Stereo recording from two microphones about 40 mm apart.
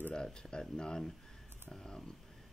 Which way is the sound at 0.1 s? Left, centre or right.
Left.